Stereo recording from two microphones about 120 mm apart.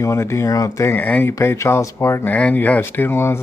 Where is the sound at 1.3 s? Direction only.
25° left (ahead or behind).